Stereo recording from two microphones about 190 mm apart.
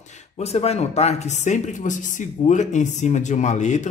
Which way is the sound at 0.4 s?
35° left (ahead or behind).